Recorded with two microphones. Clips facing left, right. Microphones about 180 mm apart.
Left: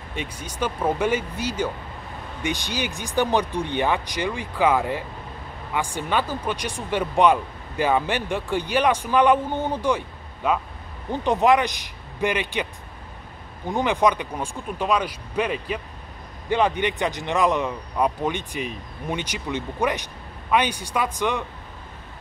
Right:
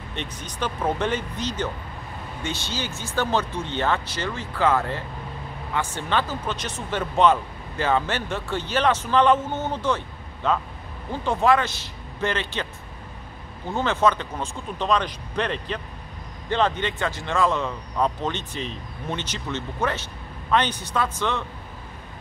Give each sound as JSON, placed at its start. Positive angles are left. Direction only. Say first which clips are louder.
{"t": 0.1, "sound": "speech", "louder": "left 2 dB", "side_deg": 10}
{"t": 13.7, "sound": "speech", "louder": "left 1 dB", "side_deg": 15}